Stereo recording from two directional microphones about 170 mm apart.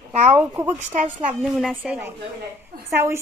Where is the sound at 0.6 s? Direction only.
40° right (ahead or behind).